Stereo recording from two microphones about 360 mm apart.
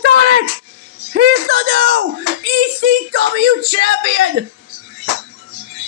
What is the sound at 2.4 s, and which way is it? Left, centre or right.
Speech, right.